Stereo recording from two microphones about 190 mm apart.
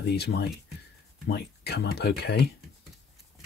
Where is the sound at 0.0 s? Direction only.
60° left (ahead or behind).